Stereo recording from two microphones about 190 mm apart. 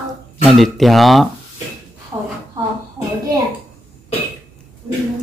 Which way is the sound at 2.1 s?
20° right (ahead or behind).